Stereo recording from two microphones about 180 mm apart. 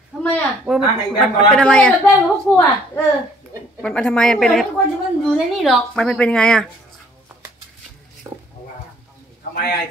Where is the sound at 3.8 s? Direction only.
5° left (ahead or behind).